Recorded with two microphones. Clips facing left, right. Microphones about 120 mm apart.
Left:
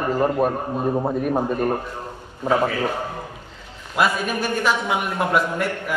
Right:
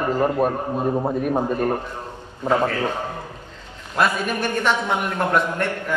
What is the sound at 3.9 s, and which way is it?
A man's voice, 10° left (ahead or behind).